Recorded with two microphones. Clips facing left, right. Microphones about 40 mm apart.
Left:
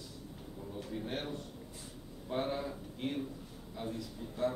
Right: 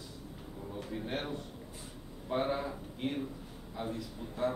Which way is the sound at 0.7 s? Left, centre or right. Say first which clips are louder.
Right 2 dB; centre.